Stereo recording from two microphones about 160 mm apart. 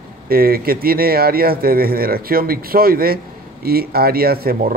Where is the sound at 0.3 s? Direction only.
70° right (ahead or behind).